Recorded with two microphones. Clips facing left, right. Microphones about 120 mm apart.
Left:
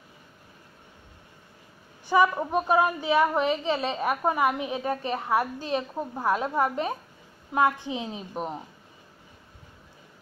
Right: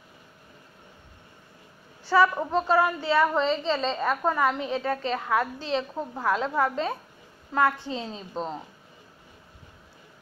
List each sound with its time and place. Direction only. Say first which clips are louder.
2.0 s a woman's voice: even; 15° left (ahead or behind)